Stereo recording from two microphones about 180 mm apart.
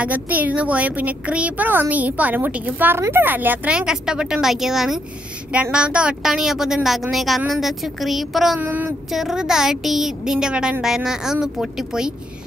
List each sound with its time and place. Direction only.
0.0 s speech: 10° right (ahead or behind)